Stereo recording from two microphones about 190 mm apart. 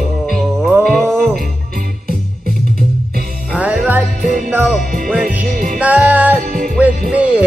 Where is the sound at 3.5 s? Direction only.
5° right (ahead or behind).